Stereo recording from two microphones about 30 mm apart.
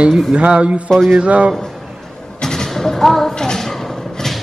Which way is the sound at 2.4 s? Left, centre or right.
Centre.